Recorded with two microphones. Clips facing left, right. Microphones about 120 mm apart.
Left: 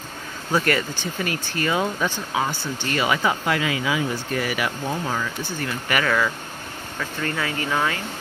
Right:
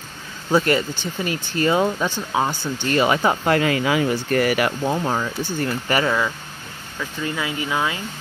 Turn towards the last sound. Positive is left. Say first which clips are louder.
# even
turn(degrees=-15)  # may be behind; listen again after turning